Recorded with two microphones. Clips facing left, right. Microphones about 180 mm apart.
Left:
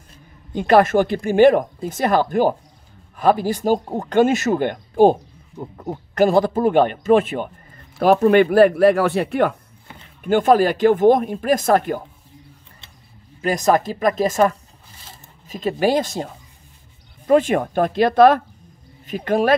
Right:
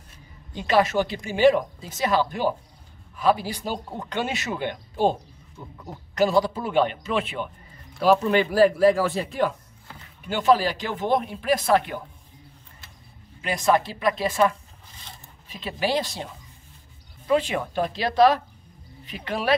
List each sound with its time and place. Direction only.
0.5 s speech: 50° left (ahead or behind)
10.2 s speech: 50° left (ahead or behind)
13.4 s speech: 40° left (ahead or behind)
17.3 s speech: 50° left (ahead or behind)